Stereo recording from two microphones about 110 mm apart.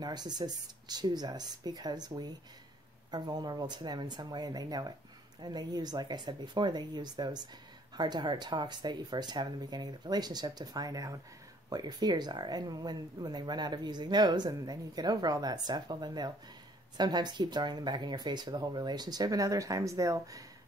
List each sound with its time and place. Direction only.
0.0 s speech: 40° right (ahead or behind)